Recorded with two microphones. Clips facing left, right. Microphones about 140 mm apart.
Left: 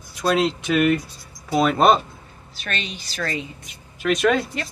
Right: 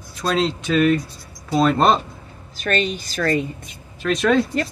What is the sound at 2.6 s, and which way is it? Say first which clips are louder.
Speech: right 9 dB; 45° right (ahead or behind).